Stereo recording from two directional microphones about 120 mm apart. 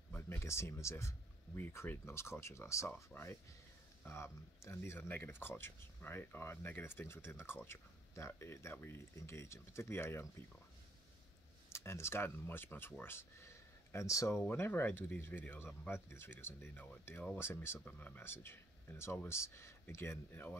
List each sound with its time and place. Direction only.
0.1 s speech: 20° left (ahead or behind)
4.0 s speech: 20° left (ahead or behind)
11.7 s speech: 20° left (ahead or behind)